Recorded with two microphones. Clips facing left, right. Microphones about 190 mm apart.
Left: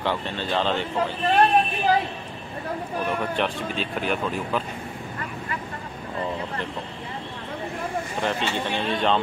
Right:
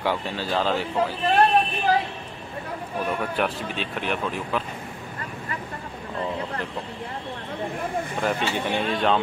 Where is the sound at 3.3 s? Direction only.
5° right (ahead or behind).